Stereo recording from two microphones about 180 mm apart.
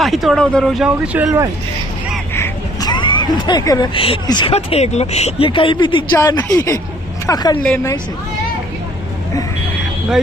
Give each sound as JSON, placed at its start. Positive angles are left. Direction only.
{"t": 0.0, "sound": "speech", "side_deg": 0}
{"t": 2.3, "sound": "speech", "side_deg": 20}
{"t": 6.1, "sound": "speech", "side_deg": 15}
{"t": 7.6, "sound": "speech", "side_deg": 10}